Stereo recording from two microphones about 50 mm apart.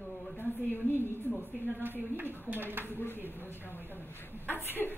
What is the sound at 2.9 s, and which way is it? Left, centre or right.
Speech, left.